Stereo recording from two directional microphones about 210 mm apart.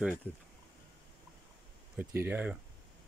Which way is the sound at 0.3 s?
10° left (ahead or behind).